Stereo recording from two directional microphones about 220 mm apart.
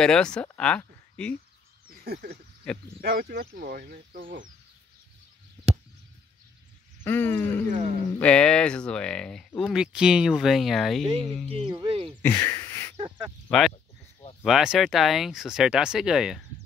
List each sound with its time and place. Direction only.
0.0 s speech: 5° left (ahead or behind)
1.9 s a sound: 45° right (ahead or behind)
3.0 s speech: 45° right (ahead or behind)
7.0 s a sound: 10° left (ahead or behind)
7.6 s speech: 35° right (ahead or behind)
8.2 s speech: 5° left (ahead or behind)
11.4 s speech: 25° right (ahead or behind)
12.2 s speech: 10° left (ahead or behind)
13.5 s speech: centre (ahead or behind)